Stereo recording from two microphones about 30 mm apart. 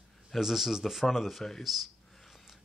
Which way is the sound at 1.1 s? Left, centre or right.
Centre.